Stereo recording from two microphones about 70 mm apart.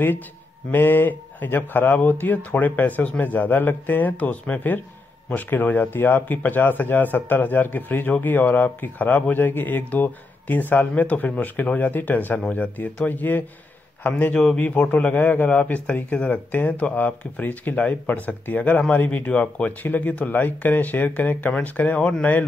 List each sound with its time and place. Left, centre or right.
0.7 s a man's voice: left